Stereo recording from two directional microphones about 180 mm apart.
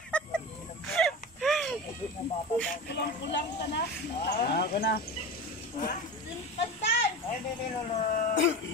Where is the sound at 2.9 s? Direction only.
70° left (ahead or behind).